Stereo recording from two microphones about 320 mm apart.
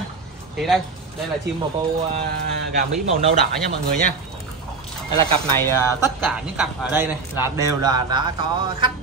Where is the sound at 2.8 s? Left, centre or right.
Centre.